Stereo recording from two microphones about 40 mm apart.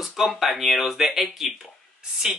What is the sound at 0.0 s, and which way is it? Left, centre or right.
Speech, centre.